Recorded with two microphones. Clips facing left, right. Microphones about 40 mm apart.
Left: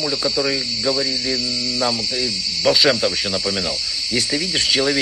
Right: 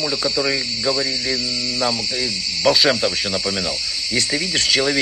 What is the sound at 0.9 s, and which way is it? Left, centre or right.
A man's voice, right.